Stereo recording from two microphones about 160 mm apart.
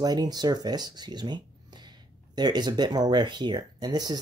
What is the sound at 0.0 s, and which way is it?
Speech, 25° right (ahead or behind).